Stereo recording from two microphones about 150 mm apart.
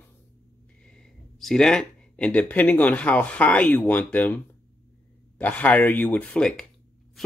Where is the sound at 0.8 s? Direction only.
5° left (ahead or behind).